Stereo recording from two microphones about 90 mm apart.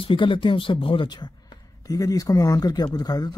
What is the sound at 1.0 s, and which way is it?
Speech, 55° left (ahead or behind).